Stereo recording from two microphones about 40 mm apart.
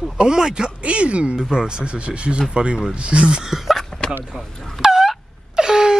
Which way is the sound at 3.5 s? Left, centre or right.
Centre.